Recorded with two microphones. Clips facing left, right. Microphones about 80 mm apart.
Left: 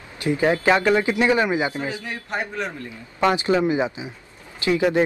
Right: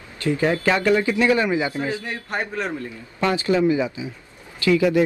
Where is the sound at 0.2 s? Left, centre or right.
Centre.